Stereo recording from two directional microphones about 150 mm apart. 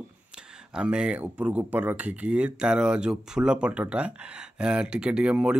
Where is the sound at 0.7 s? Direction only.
5° right (ahead or behind).